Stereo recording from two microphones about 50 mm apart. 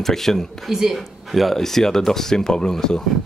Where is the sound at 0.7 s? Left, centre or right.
Centre.